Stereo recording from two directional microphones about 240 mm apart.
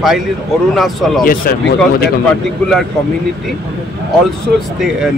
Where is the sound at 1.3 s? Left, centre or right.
Left.